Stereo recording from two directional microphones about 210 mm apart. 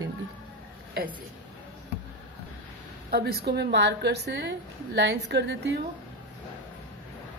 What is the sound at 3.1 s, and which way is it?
A woman's voice, 50° right (ahead or behind).